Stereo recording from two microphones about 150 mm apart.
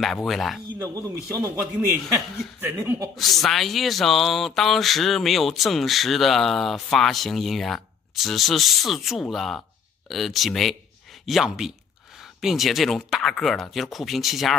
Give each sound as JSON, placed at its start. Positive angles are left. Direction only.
{"t": 0.0, "sound": "speech", "side_deg": 0}
{"t": 0.7, "sound": "speech", "side_deg": -20}
{"t": 2.6, "sound": "speech", "side_deg": -20}
{"t": 3.2, "sound": "speech", "side_deg": 0}